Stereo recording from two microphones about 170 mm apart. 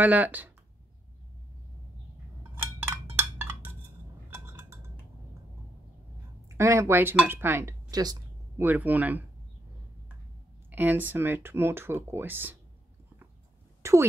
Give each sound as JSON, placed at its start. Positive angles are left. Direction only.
{"t": 0.0, "sound": "speech", "side_deg": -10}
{"t": 2.5, "sound": "a sound", "side_deg": -10}
{"t": 4.3, "sound": "chink", "side_deg": -15}
{"t": 6.5, "sound": "speech", "side_deg": -20}
{"t": 8.6, "sound": "speech", "side_deg": -10}
{"t": 10.7, "sound": "speech", "side_deg": -10}
{"t": 13.8, "sound": "speech", "side_deg": -15}